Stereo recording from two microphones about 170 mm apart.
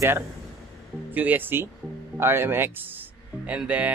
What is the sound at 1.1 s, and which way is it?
Speech, 10° right (ahead or behind).